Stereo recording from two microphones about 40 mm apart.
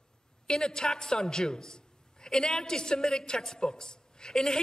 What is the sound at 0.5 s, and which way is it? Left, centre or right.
A woman's voice, centre.